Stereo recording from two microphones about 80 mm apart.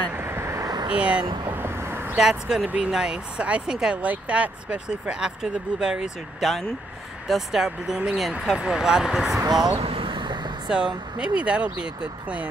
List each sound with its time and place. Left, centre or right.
0.1 s vehicle: right
0.8 s speech: centre
1.6 s vehicle: right
2.1 s speech: centre
9.8 s vehicle: right
10.7 s speech: centre